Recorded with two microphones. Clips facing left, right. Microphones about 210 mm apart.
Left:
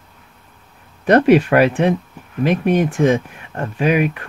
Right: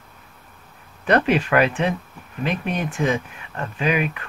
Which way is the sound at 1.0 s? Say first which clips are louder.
Left 7 dB; 50° left (ahead or behind).